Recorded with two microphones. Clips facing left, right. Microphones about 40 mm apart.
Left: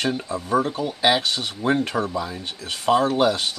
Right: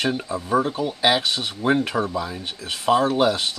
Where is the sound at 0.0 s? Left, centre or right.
Centre.